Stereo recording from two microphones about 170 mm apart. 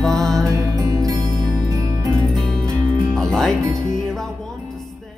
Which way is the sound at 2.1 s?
5° left (ahead or behind).